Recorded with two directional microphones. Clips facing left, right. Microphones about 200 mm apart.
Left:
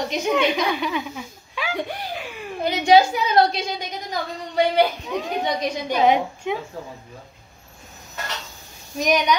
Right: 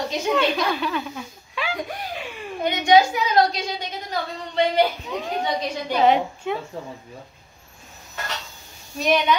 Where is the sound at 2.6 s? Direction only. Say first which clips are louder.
Left 1 dB; 30° left (ahead or behind).